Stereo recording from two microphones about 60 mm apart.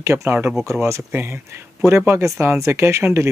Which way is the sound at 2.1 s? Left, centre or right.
Right.